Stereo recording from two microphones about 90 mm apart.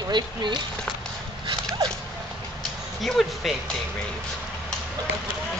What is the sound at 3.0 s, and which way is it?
Speech, 5° left (ahead or behind).